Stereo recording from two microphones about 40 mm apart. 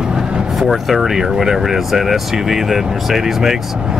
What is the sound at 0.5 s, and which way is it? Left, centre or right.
Speech, centre.